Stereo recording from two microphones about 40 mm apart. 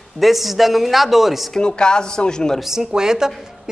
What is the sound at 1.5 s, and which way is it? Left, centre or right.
Speech, left.